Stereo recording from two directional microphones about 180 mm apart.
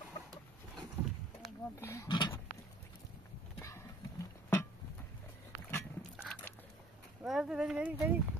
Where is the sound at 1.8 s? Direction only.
15° left (ahead or behind).